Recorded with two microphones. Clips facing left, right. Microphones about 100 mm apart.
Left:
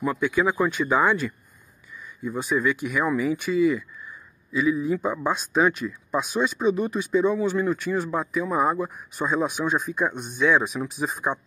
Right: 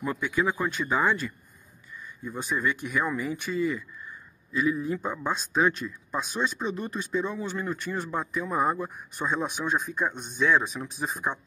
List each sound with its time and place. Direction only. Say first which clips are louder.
0.5 s speech: left 5 dB; 15° left (ahead or behind)
2.2 s speech: left 5 dB; 5° left (ahead or behind)